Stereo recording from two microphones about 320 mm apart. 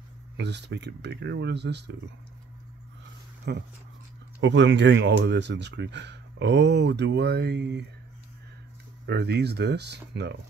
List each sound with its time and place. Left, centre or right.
0.4 s speech: right
3.5 s speech: right
9.0 s speech: right